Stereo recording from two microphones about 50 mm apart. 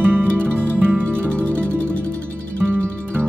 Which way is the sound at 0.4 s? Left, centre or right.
Left.